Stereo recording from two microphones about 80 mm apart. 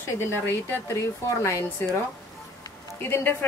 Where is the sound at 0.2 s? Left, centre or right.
Left.